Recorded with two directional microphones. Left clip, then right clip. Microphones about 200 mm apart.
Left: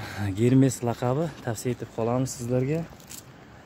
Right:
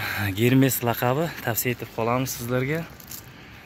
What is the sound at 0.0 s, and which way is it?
Speech, 5° left (ahead or behind).